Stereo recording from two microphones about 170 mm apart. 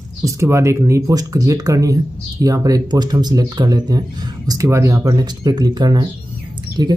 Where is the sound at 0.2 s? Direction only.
15° right (ahead or behind).